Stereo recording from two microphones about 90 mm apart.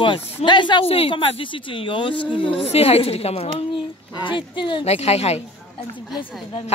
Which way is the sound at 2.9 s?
90° left.